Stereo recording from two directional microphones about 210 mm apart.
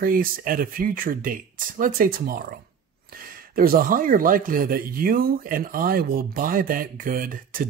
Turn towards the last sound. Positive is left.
turn(degrees=-40)  # may be behind; listen again after turning